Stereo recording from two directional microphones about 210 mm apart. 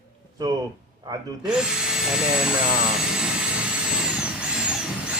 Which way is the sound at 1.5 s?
5° right (ahead or behind).